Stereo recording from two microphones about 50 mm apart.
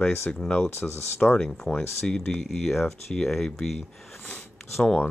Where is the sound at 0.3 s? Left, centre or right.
Left.